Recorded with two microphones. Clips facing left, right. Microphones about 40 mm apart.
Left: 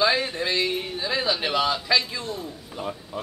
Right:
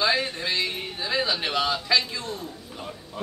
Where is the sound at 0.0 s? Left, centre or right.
Centre.